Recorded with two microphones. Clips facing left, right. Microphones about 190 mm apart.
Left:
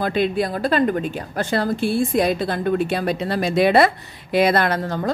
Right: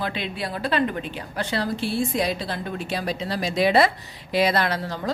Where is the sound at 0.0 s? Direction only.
45° left (ahead or behind).